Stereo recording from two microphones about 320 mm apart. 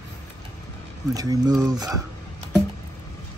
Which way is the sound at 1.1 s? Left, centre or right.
Centre.